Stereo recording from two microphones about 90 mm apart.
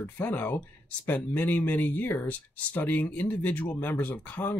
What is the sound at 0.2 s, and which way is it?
Speech, 20° left (ahead or behind).